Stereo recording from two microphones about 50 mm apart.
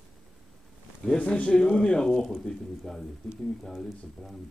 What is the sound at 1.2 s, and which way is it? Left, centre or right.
Speech, left.